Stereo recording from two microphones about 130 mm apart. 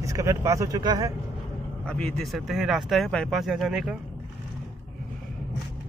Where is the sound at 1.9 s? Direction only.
5° left (ahead or behind).